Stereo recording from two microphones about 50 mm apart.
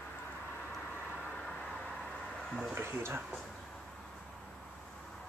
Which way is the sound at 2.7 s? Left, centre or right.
Right.